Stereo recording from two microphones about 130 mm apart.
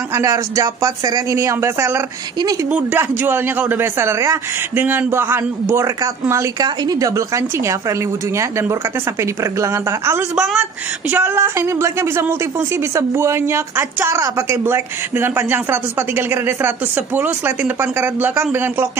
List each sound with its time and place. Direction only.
0.1 s a man's voice: 25° right (ahead or behind)
10.3 s speech: 5° right (ahead or behind)